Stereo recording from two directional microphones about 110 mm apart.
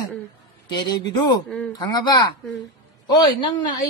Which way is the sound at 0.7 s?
40° left (ahead or behind).